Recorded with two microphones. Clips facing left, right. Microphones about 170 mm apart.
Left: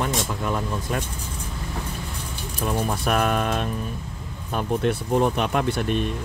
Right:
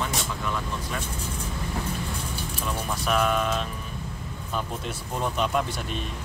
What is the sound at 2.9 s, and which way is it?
Speech, 55° left (ahead or behind).